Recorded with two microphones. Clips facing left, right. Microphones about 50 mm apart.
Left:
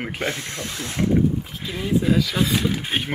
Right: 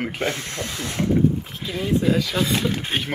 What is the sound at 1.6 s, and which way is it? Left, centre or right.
Speech, centre.